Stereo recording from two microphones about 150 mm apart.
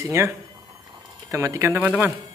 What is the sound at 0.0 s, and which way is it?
Speech, 20° right (ahead or behind).